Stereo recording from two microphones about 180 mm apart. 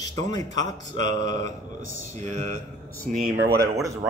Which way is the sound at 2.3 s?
45° right (ahead or behind).